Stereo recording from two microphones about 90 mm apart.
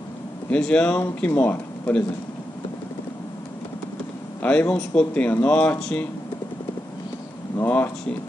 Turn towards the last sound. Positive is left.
turn(degrees=20)  # may be behind; listen again after turning